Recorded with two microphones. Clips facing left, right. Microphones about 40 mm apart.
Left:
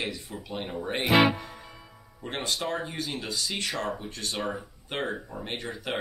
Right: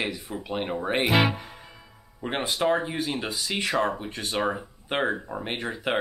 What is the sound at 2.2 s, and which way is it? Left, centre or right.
Speech, centre.